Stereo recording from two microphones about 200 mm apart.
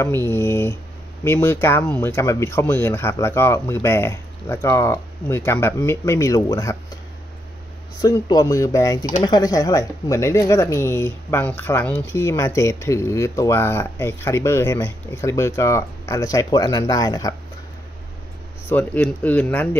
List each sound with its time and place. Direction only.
0.0 s speech: 10° left (ahead or behind)
8.0 s speech: 20° left (ahead or behind)
18.7 s speech: 10° left (ahead or behind)